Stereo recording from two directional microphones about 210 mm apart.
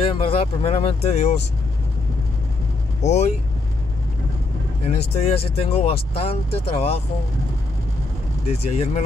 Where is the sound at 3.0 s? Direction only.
35° left (ahead or behind).